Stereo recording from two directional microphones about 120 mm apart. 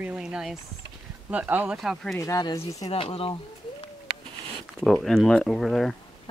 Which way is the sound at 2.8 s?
50° left (ahead or behind).